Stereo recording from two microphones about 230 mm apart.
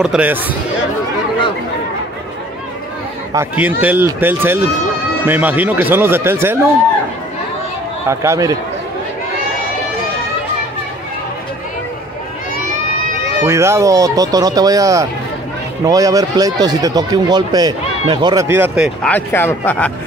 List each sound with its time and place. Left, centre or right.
0.0 s speech: centre
3.3 s speech: centre
8.1 s speech: centre
13.4 s speech: centre
19.0 s a man's voice: centre